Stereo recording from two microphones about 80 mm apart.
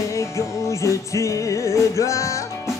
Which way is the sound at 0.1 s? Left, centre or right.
Left.